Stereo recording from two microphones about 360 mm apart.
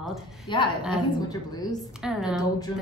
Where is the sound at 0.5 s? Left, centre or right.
Centre.